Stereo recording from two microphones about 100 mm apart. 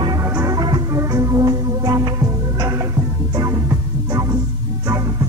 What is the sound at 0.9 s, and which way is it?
Music, 35° right (ahead or behind).